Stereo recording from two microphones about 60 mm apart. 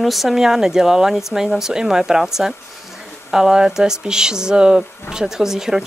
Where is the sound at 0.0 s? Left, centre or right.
Centre.